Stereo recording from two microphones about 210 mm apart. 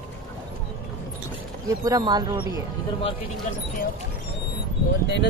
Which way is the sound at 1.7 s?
20° right (ahead or behind).